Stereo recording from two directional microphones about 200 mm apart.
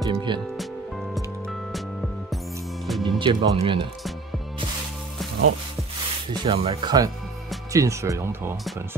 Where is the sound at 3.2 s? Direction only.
25° right (ahead or behind).